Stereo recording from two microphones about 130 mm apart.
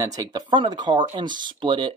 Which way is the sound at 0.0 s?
25° right (ahead or behind).